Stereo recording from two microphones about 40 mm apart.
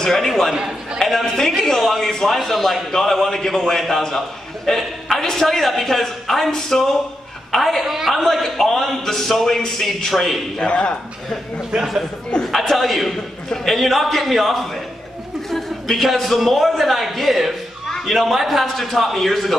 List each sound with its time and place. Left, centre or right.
0.1 s a man's voice: centre
7.8 s a man's voice: centre
8.2 s a man's voice: centre
10.6 s speech: left
11.7 s a man's voice: centre
12.4 s a man's voice: centre